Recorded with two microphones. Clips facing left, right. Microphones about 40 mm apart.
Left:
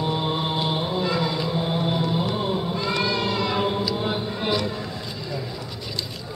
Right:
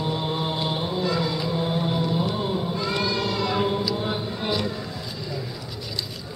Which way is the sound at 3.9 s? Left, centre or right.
Centre.